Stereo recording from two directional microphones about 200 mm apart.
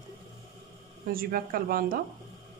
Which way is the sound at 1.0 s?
45° right (ahead or behind).